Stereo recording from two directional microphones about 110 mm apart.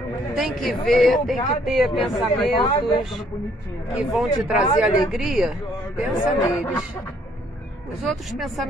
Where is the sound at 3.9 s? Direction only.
Centre (ahead or behind).